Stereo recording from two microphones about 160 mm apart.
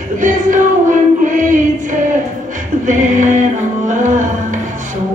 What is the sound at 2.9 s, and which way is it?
Music, 50° right (ahead or behind).